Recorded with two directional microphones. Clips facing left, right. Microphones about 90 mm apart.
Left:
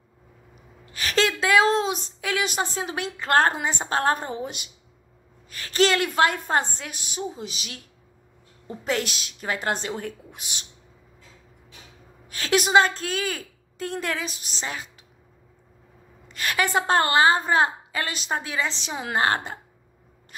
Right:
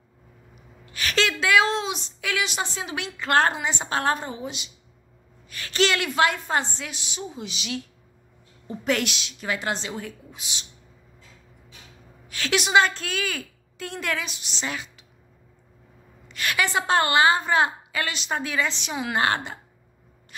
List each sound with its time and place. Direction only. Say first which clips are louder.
0.9 s a woman's voice: left 1 dB; 35° left (ahead or behind)
5.5 s a woman's voice: left 2 dB; 35° left (ahead or behind)
12.3 s a woman's voice: left 2 dB; 40° left (ahead or behind)
16.3 s a woman's voice: left 1 dB; 35° left (ahead or behind)
18.3 s a woman's voice: right 1 dB; 25° left (ahead or behind)